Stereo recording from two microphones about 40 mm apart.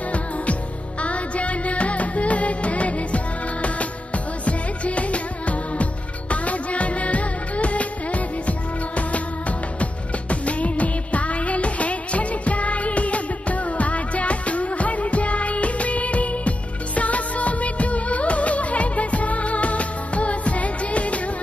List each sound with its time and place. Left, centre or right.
1.0 s music: left
10.3 s music: left